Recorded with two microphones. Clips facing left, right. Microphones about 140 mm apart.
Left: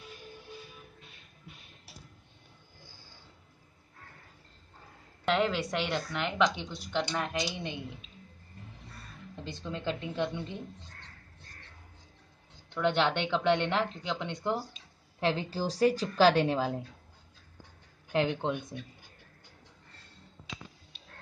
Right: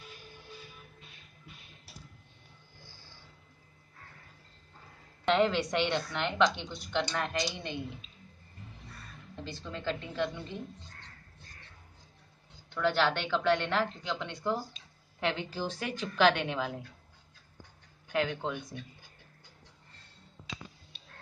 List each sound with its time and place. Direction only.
5.2 s a woman's voice: 5° left (ahead or behind)
9.4 s a woman's voice: 20° left (ahead or behind)
12.7 s a woman's voice: 20° left (ahead or behind)
15.1 s a woman's voice: 30° left (ahead or behind)
18.1 s a woman's voice: 25° left (ahead or behind)